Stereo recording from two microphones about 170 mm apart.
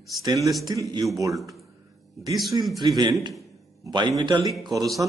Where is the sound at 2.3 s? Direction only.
Centre (ahead or behind).